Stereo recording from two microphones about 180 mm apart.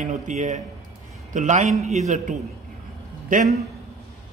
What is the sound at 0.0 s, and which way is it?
A man's voice, 40° right (ahead or behind).